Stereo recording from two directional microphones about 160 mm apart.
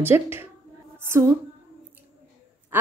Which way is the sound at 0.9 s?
15° right (ahead or behind).